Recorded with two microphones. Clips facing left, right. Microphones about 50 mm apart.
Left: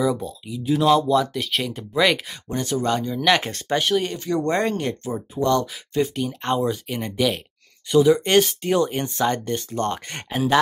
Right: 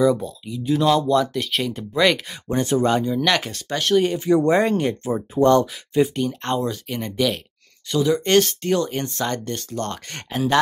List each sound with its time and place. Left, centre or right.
0.0 s speech: centre
2.4 s speech: right
2.9 s speech: centre
3.6 s speech: centre
3.9 s speech: centre
4.2 s speech: centre
5.0 s speech: right
6.1 s speech: centre